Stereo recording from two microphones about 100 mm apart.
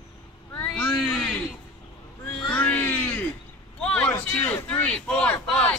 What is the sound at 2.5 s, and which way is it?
Cat, 15° left (ahead or behind).